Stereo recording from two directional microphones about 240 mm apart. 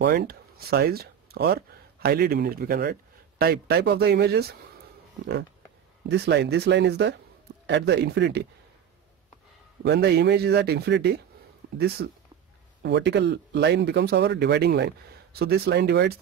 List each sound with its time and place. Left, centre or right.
0.0 s speech: right
6.0 s speech: right
9.8 s speech: right